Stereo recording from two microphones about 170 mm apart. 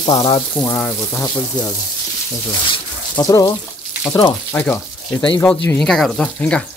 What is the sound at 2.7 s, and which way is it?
Speech, 25° left (ahead or behind).